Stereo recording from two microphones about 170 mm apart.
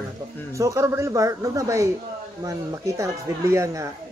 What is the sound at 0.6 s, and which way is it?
Speech, 15° right (ahead or behind).